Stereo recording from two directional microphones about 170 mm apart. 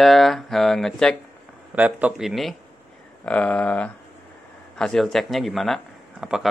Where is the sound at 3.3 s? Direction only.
5° left (ahead or behind).